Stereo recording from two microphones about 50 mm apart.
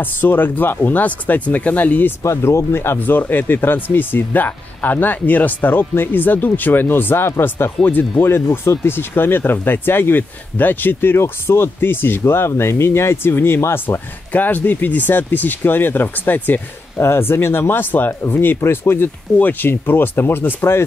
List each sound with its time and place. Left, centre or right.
0.0 s speech: left
2.2 s speech: left
7.8 s speech: left
8.2 s speech: left
8.8 s speech: left
14.3 s speech: left
17.0 s speech: left
19.3 s speech: left